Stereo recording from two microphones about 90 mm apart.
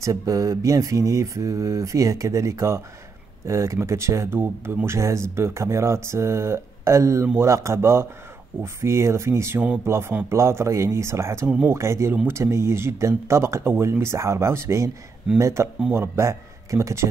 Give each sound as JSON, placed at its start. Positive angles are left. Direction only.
{"t": 0.0, "sound": "a man's voice", "side_deg": -35}